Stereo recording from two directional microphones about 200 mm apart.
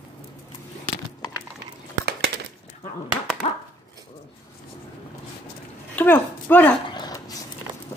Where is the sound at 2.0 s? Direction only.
55° right (ahead or behind).